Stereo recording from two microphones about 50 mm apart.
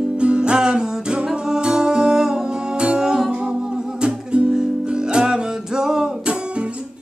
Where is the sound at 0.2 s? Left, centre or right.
Centre.